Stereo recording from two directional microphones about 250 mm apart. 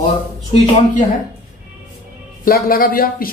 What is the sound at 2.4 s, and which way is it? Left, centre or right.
Speech, left.